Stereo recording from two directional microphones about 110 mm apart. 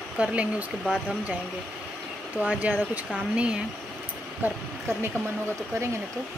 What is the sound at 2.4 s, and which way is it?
Speech, 15° right (ahead or behind).